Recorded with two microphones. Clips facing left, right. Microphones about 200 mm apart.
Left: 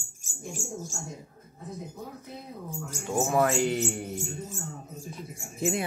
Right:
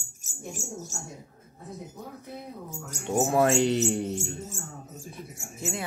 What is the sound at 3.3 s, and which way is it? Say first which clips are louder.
Mantra: right 2 dB; 25° right (ahead or behind).